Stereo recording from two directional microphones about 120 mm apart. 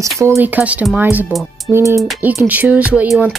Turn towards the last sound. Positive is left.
turn(degrees=-10)  # may be behind; listen again after turning